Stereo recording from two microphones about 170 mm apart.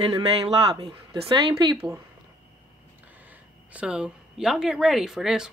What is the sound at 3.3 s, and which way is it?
Speech, 5° right (ahead or behind).